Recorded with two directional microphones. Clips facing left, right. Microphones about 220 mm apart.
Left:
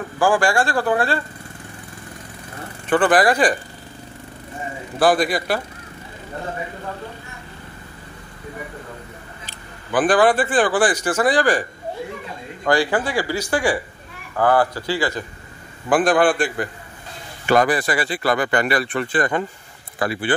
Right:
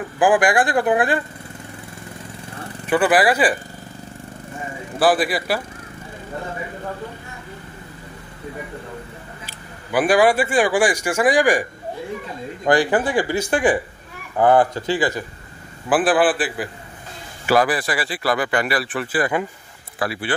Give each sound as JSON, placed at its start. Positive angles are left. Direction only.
{"t": 0.2, "sound": "speech", "side_deg": -15}
{"t": 2.9, "sound": "speech", "side_deg": -10}
{"t": 4.9, "sound": "speech", "side_deg": -5}
{"t": 9.5, "sound": "speech", "side_deg": -10}
{"t": 12.6, "sound": "speech", "side_deg": -20}
{"t": 15.9, "sound": "speech", "side_deg": -5}